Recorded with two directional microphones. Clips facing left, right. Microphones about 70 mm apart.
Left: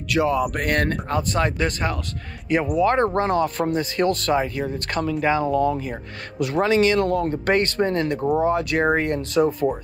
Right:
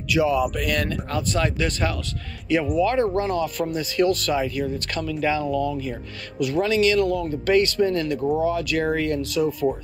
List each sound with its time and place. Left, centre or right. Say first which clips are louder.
0.1 s speech: even; left
1.1 s speech: even; left
8.3 s speech: left 2 dB; left
8.5 s speech: left 3 dB; left